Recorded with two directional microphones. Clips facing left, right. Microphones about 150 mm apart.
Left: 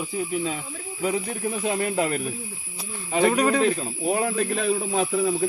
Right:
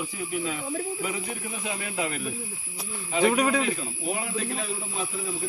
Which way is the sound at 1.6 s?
45° left (ahead or behind).